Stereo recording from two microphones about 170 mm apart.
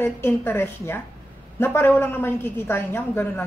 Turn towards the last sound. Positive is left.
turn(degrees=10)  # may be behind; listen again after turning